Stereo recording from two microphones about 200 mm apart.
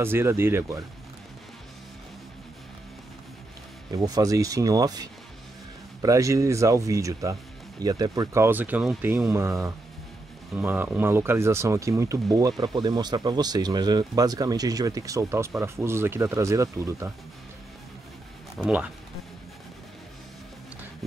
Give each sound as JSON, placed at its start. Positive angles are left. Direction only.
{"t": 0.0, "sound": "speech", "side_deg": -10}
{"t": 3.9, "sound": "speech", "side_deg": -15}
{"t": 18.6, "sound": "speech", "side_deg": -5}